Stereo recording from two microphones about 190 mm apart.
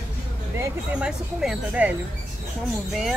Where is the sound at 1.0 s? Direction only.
5° right (ahead or behind).